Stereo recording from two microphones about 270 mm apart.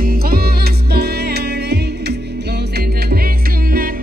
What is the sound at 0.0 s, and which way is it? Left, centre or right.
Music, right.